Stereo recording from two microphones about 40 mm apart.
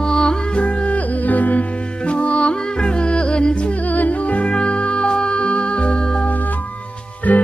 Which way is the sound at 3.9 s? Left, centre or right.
Left.